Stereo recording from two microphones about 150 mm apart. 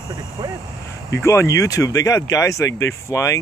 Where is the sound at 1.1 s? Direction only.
20° left (ahead or behind).